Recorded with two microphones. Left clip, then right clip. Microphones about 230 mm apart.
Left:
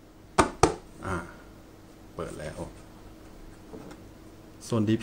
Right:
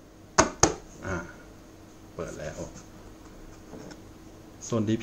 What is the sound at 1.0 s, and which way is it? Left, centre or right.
Finger snapping, centre.